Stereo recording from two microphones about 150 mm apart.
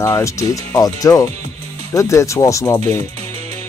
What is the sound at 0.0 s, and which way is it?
Speech, 20° left (ahead or behind).